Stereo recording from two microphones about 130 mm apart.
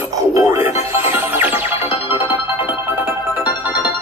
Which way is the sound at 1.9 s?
45° left (ahead or behind).